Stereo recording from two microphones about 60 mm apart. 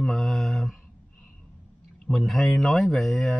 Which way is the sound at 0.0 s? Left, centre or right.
Centre.